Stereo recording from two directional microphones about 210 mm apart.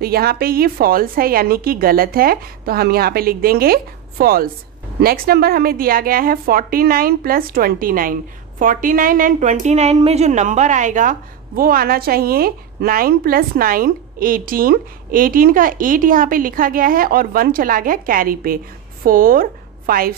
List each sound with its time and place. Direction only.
0.0 s a woman's voice: 45° right (ahead or behind)